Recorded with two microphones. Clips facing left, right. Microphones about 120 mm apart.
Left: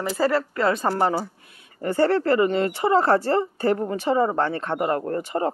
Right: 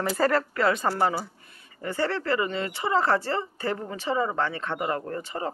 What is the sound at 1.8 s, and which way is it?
A woman's voice, 45° left (ahead or behind).